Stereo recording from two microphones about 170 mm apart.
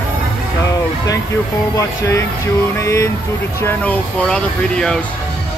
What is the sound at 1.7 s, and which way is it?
Speech, 15° left (ahead or behind).